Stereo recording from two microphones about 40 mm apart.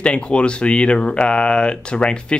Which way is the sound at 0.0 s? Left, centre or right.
Left.